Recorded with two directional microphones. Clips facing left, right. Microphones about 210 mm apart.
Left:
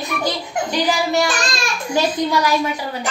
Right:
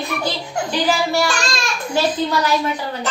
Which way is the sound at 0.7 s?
20° left (ahead or behind).